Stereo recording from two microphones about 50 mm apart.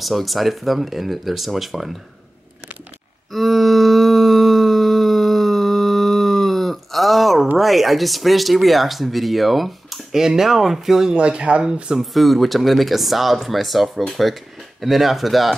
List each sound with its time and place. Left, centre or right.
0.0 s speech: centre
3.3 s a sound: centre
7.5 s speech: centre
11.1 s speech: right
12.1 s speech: centre